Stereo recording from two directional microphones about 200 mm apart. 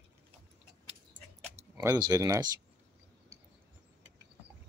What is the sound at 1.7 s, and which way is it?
Speech, 20° right (ahead or behind).